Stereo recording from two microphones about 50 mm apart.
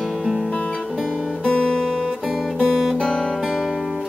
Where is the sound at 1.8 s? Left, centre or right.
Centre.